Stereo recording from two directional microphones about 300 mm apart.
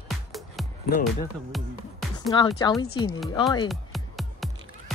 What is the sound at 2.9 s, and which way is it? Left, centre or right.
Speech, left.